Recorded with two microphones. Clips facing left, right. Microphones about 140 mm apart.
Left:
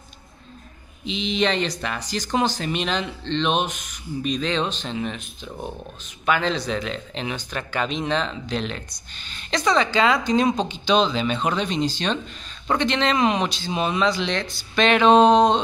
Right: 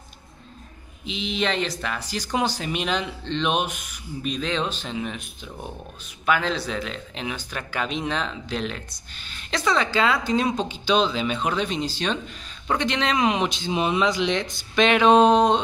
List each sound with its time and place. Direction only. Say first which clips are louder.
1.0 s speech: left 3 dB; 5° right (ahead or behind)